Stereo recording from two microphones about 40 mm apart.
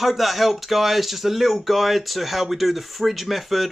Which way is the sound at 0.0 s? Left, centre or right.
Centre.